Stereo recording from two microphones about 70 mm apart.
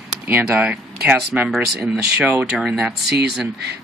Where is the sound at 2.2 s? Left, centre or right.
Right.